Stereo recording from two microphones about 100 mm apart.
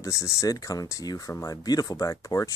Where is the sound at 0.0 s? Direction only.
30° left (ahead or behind).